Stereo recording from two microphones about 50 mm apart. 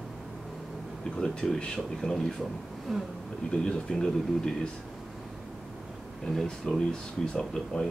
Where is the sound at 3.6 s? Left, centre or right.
Centre.